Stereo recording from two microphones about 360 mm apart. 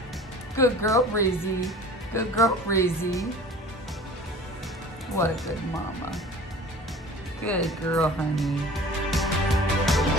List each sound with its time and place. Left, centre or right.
0.6 s speech: centre
5.1 s speech: centre
7.4 s speech: centre
9.1 s music: centre